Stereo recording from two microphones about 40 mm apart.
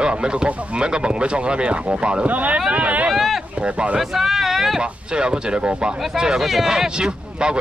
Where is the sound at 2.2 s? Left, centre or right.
Right.